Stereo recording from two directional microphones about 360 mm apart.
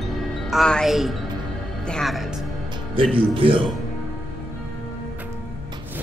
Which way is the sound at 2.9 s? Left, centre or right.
Centre.